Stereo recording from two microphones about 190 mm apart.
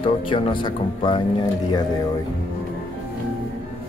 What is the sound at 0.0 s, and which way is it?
Speech, 25° left (ahead or behind).